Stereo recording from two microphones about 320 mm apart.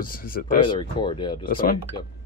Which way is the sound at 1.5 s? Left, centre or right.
Left.